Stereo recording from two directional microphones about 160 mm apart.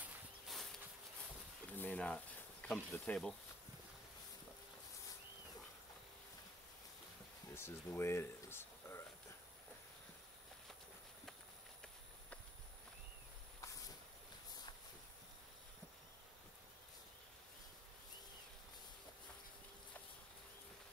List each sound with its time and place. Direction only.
0.0 s a sound: centre (ahead or behind)
1.7 s snake: 10° left (ahead or behind)
7.5 s speech: 15° left (ahead or behind)